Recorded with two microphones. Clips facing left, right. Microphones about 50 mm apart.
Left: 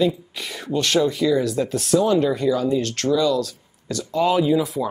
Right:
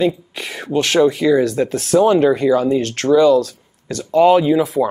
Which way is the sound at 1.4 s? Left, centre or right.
Right.